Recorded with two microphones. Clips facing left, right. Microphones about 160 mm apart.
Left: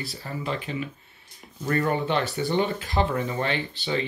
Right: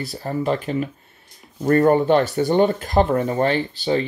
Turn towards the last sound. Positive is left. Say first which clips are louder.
# right 7 dB
turn(degrees=-40)  # may be behind; listen again after turning